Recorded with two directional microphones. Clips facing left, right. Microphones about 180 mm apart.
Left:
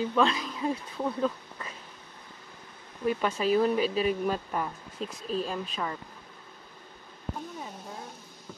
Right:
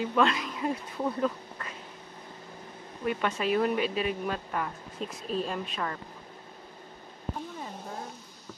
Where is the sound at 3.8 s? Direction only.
35° left (ahead or behind).